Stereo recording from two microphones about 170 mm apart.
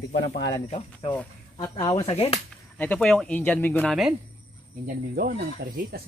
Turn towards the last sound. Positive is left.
turn(degrees=-65)  # may be behind; listen again after turning